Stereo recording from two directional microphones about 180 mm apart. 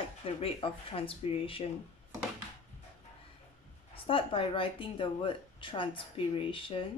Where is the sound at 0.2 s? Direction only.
30° left (ahead or behind).